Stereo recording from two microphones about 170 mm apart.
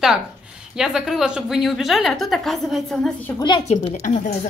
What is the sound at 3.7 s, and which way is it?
Speech, 45° left (ahead or behind).